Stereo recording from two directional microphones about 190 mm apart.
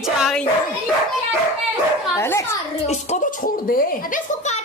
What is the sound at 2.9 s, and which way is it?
A child's voice, 40° left (ahead or behind).